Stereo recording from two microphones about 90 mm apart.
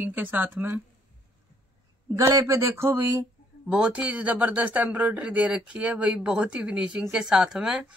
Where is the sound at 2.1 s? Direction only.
35° right (ahead or behind).